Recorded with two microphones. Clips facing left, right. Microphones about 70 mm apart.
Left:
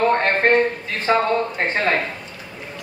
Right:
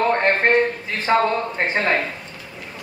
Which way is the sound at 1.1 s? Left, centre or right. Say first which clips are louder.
Even; centre.